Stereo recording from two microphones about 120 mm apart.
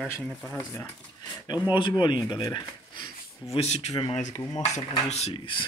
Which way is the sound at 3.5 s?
65° left (ahead or behind).